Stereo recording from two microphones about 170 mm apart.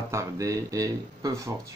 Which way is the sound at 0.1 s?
15° right (ahead or behind).